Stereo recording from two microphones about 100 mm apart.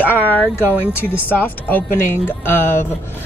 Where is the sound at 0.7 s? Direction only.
20° left (ahead or behind).